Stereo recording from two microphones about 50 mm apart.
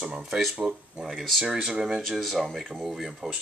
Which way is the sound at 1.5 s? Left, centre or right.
Centre.